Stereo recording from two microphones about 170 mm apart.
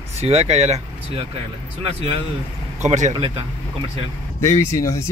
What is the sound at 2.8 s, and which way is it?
Speech, 45° right (ahead or behind).